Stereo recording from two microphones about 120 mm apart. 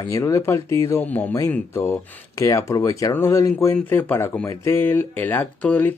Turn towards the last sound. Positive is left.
turn(degrees=15)  # may be behind; listen again after turning